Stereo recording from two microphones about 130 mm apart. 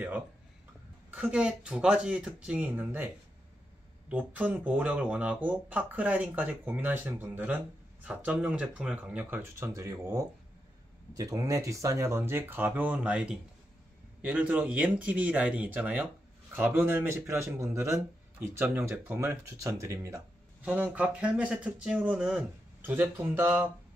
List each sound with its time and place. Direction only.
1.1 s speech: 10° right (ahead or behind)
4.1 s speech: 10° right (ahead or behind)
20.6 s speech: 10° right (ahead or behind)